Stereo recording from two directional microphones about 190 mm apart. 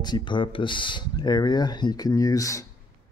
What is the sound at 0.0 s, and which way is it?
Speech, 25° left (ahead or behind).